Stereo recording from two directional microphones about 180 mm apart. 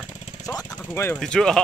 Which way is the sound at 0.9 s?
15° left (ahead or behind).